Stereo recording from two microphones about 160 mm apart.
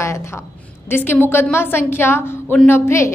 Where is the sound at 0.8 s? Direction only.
15° left (ahead or behind).